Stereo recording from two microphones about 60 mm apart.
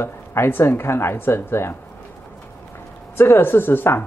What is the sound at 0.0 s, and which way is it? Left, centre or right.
Speech, left.